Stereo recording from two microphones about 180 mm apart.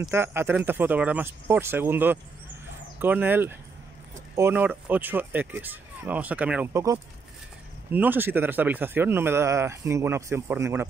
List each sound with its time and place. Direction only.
0.1 s a man's voice: 15° right (ahead or behind)